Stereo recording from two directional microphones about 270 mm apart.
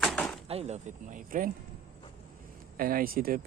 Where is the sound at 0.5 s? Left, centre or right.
Right.